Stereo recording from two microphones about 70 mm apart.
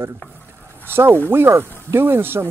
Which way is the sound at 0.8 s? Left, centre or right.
Right.